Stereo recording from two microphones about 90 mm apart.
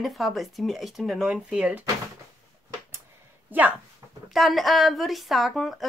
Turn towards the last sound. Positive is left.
turn(degrees=0)  # may be behind; listen again after turning